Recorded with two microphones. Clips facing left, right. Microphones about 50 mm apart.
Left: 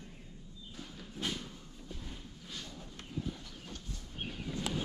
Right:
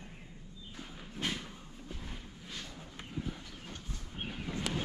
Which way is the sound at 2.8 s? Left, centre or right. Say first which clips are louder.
Left 1 dB; right.